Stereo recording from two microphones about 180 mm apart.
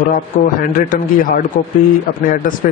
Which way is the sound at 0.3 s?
40° left (ahead or behind).